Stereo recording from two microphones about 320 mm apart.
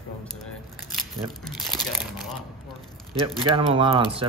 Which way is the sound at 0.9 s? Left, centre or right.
Centre.